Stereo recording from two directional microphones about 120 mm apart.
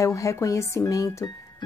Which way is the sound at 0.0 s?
25° left (ahead or behind).